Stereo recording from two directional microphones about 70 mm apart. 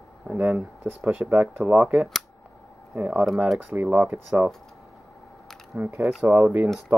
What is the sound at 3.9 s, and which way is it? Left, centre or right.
Speech, right.